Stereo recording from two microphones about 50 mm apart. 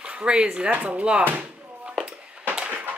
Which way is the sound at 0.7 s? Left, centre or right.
Right.